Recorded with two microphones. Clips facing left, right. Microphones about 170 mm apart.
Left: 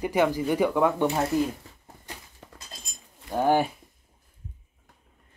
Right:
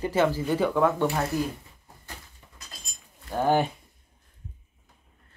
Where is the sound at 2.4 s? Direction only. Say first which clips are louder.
Left 8 dB; 90° left.